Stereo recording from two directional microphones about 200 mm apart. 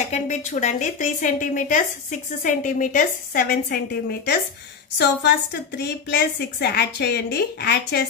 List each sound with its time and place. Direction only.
0.0 s a woman's voice: 35° left (ahead or behind)
4.9 s a woman's voice: 55° left (ahead or behind)